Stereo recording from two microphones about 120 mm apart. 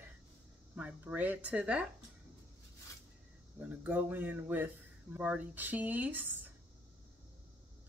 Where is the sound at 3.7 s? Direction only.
15° right (ahead or behind).